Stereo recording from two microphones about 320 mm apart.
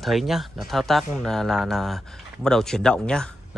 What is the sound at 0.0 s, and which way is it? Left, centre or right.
Speech, centre.